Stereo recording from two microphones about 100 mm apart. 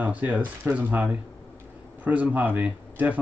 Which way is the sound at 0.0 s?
15° right (ahead or behind).